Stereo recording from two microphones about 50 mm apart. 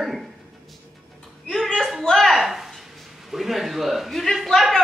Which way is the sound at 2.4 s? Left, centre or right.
Centre.